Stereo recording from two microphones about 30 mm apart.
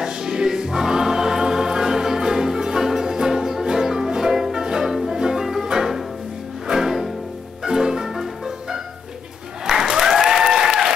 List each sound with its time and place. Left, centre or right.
0.0 s music: right
5.4 s music: centre
9.8 s applause: centre